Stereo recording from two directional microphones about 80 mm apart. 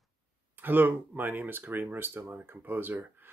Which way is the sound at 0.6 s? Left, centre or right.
Right.